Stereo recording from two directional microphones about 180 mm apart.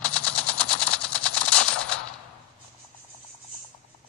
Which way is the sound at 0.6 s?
5° left (ahead or behind).